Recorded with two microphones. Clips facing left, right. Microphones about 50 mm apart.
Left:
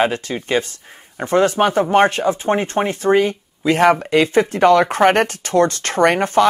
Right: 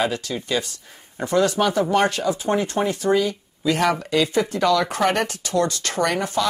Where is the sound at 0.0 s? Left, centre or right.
Left.